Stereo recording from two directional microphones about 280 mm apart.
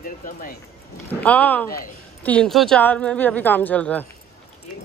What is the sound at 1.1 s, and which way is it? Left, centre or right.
A woman's voice, centre.